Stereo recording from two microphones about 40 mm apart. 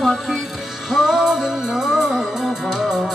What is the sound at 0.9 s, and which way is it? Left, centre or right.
Music, centre.